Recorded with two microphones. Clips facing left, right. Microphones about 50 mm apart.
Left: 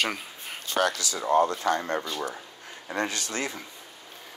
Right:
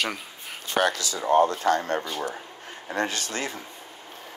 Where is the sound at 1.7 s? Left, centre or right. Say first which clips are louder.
Right 3 dB; right.